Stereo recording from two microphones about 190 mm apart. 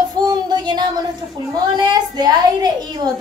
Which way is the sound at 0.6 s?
20° right (ahead or behind).